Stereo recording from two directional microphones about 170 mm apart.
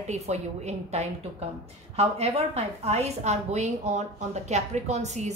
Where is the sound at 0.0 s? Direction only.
40° right (ahead or behind).